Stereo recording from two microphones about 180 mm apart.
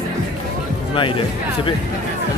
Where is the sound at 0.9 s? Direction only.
30° left (ahead or behind).